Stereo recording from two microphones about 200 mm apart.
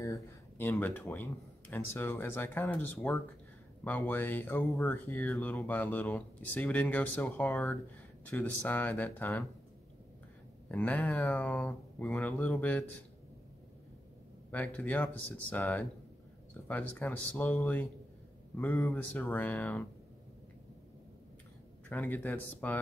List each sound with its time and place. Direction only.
0.6 s speech: 10° left (ahead or behind)
10.7 s speech: 10° left (ahead or behind)
14.5 s speech: 10° left (ahead or behind)
21.8 s speech: 10° left (ahead or behind)